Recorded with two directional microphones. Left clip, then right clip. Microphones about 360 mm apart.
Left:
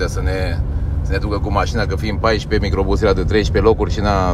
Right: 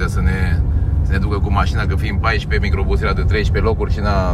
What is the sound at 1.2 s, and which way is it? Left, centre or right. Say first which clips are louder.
Speech: left 1 dB; centre.